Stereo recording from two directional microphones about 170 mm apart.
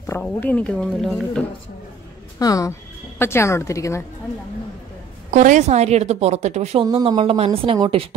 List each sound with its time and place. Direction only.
0.0 s speech: 10° left (ahead or behind)
2.3 s speech: 20° left (ahead or behind)
5.3 s speech: 45° right (ahead or behind); by 8.1 s 30° right (ahead or behind)